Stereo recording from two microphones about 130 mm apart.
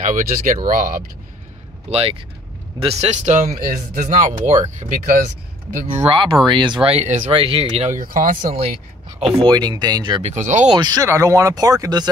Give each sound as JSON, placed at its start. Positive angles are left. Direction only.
{"t": 0.0, "sound": "speech", "side_deg": -90}
{"t": 1.9, "sound": "speech", "side_deg": -50}
{"t": 6.0, "sound": "speech", "side_deg": -40}
{"t": 7.3, "sound": "speech", "side_deg": -45}
{"t": 8.0, "sound": "speech", "side_deg": -90}
{"t": 9.2, "sound": "speech", "side_deg": -45}
{"t": 9.5, "sound": "speech", "side_deg": -35}
{"t": 10.2, "sound": "speech", "side_deg": -70}
{"t": 10.7, "sound": "speech", "side_deg": -30}